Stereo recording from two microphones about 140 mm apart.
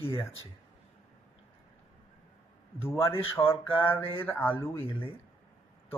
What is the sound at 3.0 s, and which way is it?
Speech, 15° left (ahead or behind).